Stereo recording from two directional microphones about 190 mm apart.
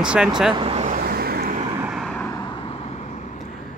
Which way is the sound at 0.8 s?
50° right (ahead or behind).